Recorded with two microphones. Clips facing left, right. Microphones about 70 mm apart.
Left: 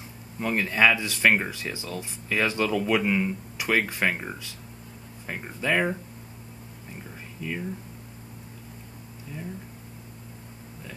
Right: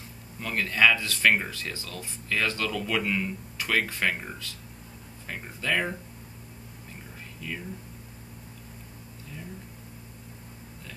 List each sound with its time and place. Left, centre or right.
0.4 s speech: centre
7.4 s speech: centre